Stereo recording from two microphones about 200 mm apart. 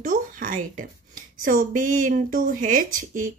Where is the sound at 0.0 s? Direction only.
40° right (ahead or behind).